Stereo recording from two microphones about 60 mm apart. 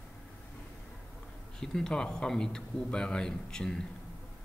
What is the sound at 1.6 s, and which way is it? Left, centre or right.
Speech, centre.